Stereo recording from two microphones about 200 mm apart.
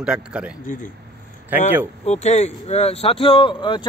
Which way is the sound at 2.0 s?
35° left (ahead or behind).